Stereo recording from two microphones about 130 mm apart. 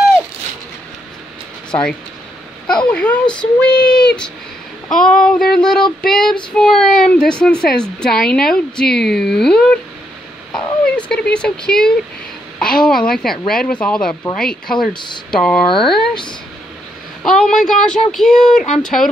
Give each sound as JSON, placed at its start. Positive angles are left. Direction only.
{"t": 1.7, "sound": "speech", "side_deg": 5}
{"t": 11.0, "sound": "a sound", "side_deg": 10}
{"t": 12.5, "sound": "a woman's voice", "side_deg": 5}
{"t": 17.2, "sound": "speech", "side_deg": 5}